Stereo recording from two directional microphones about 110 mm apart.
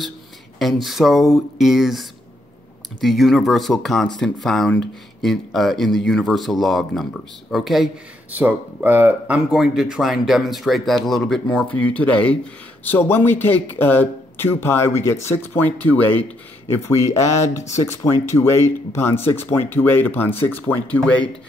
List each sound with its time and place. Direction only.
0.6 s speech: centre (ahead or behind)
8.4 s speech: 15° right (ahead or behind)
9.5 s speech: 5° right (ahead or behind); by 16.3 s 15° left (ahead or behind)
16.8 s speech: 25° left (ahead or behind); by 21.3 s 10° left (ahead or behind)